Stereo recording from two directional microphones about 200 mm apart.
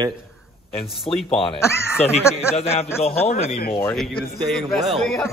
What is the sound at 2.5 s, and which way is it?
Speech, 30° left (ahead or behind).